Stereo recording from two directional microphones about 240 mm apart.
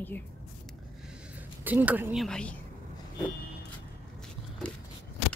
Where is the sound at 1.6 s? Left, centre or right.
Centre.